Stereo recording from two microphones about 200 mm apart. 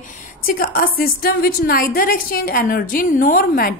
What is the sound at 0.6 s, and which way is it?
A woman's voice, 45° left (ahead or behind).